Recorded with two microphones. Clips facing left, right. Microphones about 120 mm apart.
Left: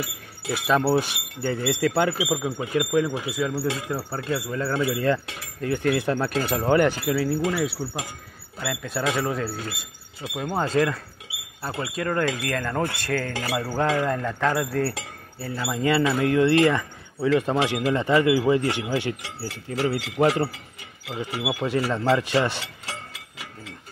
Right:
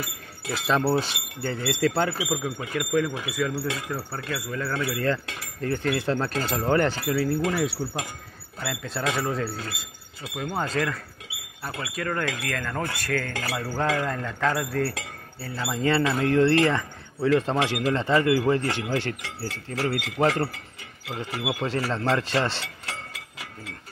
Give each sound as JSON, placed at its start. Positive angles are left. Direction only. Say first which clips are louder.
{"t": 0.5, "sound": "speech", "louder": "left 2 dB", "side_deg": 10}
{"t": 14.8, "sound": "speech", "louder": "left 1 dB", "side_deg": 25}
{"t": 15.5, "sound": "speech", "louder": "left 1 dB", "side_deg": 10}